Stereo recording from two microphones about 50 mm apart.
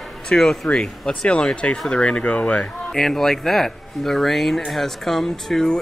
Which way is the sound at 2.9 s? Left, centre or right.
Centre.